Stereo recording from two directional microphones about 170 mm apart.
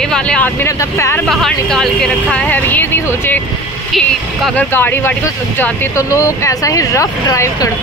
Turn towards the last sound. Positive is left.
turn(degrees=20)  # may be behind; listen again after turning